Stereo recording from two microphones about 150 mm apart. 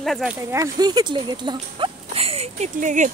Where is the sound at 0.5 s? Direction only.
25° right (ahead or behind); by 2.6 s 40° right (ahead or behind).